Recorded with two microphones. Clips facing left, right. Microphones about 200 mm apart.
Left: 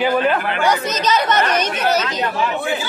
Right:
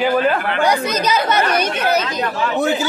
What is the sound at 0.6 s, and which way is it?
Speech, 10° right (ahead or behind).